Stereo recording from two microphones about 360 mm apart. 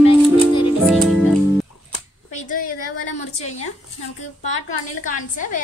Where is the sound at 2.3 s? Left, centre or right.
Left.